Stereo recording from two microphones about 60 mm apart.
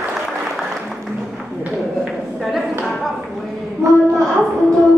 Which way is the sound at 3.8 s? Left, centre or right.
Right.